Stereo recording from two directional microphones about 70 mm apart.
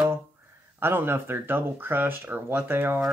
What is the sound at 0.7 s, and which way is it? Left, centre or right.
Speech, right.